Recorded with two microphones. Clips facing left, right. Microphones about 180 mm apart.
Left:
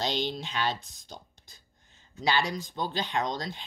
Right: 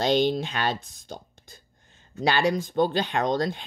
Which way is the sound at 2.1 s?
55° right (ahead or behind).